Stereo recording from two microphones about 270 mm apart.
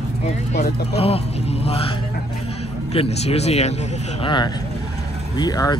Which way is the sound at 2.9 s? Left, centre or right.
Left.